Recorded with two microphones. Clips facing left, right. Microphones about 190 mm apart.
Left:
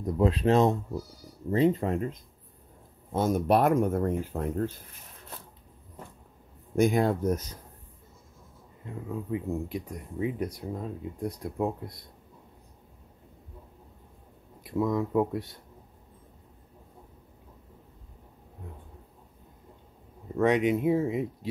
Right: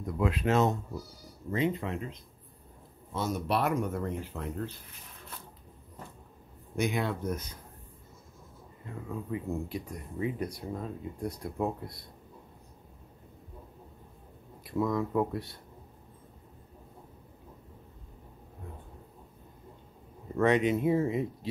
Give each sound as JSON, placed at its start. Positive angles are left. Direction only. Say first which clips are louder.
{"t": 0.0, "sound": "speech", "louder": "left 5 dB", "side_deg": 35}
{"t": 6.7, "sound": "speech", "louder": "left 7 dB", "side_deg": 45}
{"t": 8.8, "sound": "speech", "louder": "left 3 dB", "side_deg": 15}
{"t": 14.6, "sound": "speech", "louder": "left 2 dB", "side_deg": 15}
{"t": 20.4, "sound": "speech", "louder": "left 2 dB", "side_deg": 15}